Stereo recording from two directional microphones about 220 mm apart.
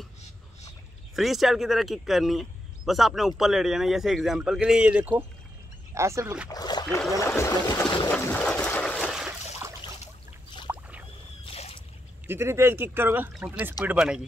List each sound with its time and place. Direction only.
1.1 s speech: centre (ahead or behind)
6.5 s splash: 20° left (ahead or behind)
7.0 s boat: 15° left (ahead or behind)
8.1 s a sound: 10° left (ahead or behind)
10.7 s rowboat: 5° right (ahead or behind)
11.4 s boat: 25° left (ahead or behind)
12.3 s speech: 10° right (ahead or behind)